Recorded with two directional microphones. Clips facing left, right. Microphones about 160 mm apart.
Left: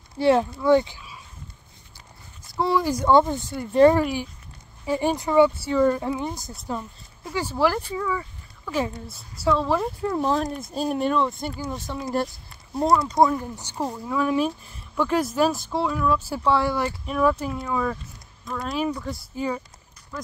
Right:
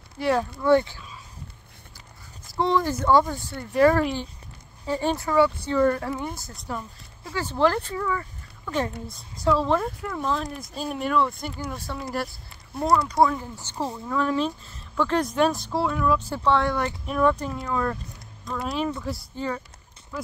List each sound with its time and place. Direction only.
0.2 s speech: 25° left (ahead or behind)
2.5 s speech: 5° left (ahead or behind)
3.1 s speech: 20° left (ahead or behind)
4.0 s speech: 10° left (ahead or behind)
10.1 s speech: 40° left (ahead or behind)
11.1 s speech: 25° left (ahead or behind); by 19.2 s centre (ahead or behind)
19.3 s speech: 10° left (ahead or behind)